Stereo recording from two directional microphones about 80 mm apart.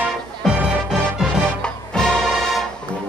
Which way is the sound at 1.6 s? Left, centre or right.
Centre.